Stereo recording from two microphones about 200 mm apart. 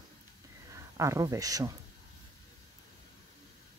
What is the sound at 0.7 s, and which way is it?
Speech, 15° right (ahead or behind).